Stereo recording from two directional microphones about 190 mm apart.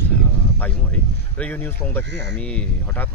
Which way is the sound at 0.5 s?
10° left (ahead or behind).